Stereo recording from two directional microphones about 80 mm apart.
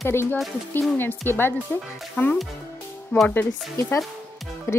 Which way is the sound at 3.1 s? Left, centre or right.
Centre.